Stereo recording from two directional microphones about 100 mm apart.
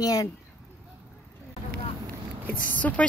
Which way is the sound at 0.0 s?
35° left (ahead or behind).